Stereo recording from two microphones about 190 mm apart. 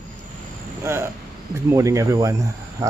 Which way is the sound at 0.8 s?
15° right (ahead or behind).